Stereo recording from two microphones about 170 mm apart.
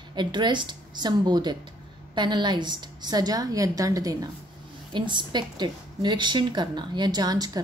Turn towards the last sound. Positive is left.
turn(degrees=-25)  # may be behind; listen again after turning